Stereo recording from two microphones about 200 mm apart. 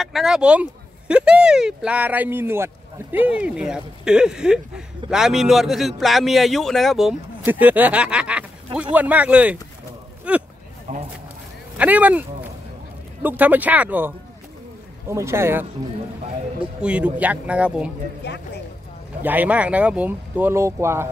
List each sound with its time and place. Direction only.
0.0 s speech: centre (ahead or behind)
10.9 s a sound: 35° right (ahead or behind)
11.7 s speech: 5° right (ahead or behind)
16.8 s speech: 5° right (ahead or behind)
18.2 s speech: 55° left (ahead or behind)
19.2 s speech: 10° right (ahead or behind)